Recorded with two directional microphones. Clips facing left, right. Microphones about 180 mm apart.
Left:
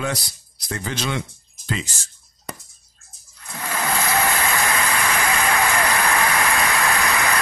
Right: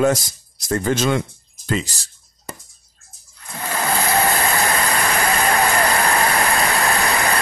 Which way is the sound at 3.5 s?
35° right (ahead or behind).